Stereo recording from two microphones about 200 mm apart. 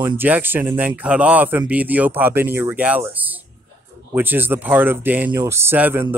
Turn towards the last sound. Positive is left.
turn(degrees=-10)  # may be behind; listen again after turning